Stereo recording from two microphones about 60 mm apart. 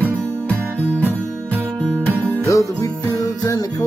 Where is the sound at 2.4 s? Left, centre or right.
Left.